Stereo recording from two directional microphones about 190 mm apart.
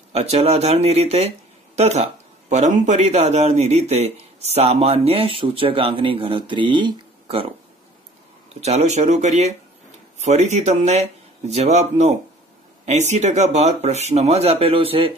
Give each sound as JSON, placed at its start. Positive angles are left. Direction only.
{"t": 0.1, "sound": "speech", "side_deg": -35}
{"t": 8.5, "sound": "speech", "side_deg": -35}